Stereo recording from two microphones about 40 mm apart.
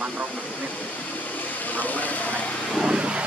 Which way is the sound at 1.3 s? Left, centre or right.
Left.